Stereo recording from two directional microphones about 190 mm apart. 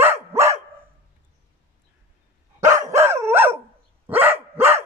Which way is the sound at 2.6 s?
15° right (ahead or behind).